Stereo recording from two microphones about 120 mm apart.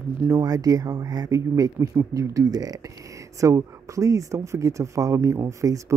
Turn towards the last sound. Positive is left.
turn(degrees=-25)  # may be behind; listen again after turning